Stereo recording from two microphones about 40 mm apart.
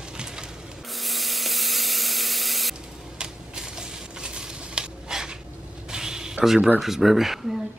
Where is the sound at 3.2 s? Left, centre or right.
Centre.